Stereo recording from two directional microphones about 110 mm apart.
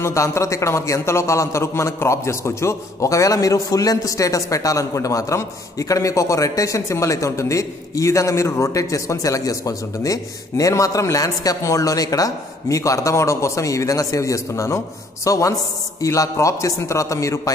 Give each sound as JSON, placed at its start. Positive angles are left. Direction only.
{"t": 0.0, "sound": "a man's voice", "side_deg": 25}